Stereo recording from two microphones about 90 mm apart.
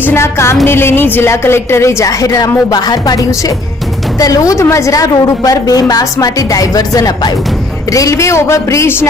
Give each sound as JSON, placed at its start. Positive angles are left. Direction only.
{"t": 0.0, "sound": "a woman's voice", "side_deg": 30}
{"t": 2.7, "sound": "music", "side_deg": 45}
{"t": 4.2, "sound": "a woman's voice", "side_deg": 40}